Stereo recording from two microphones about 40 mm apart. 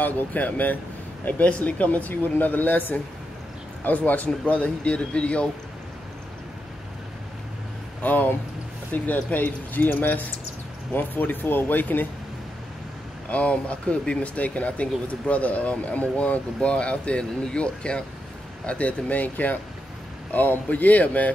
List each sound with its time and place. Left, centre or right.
0.0 s speech: left
1.4 s speech: left
2.3 s speech: left
8.0 s speech: left
13.3 s speech: left
16.5 s speech: left